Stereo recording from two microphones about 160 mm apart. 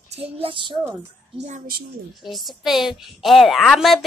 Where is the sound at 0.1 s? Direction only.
35° right (ahead or behind).